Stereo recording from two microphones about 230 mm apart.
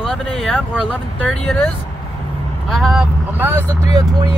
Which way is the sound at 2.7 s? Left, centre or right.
Centre.